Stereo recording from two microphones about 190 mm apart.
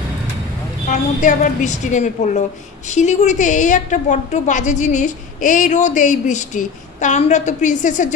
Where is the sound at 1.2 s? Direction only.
40° left (ahead or behind).